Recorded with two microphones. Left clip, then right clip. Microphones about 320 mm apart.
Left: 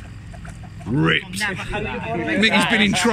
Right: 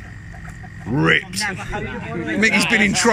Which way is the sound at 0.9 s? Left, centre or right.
Centre.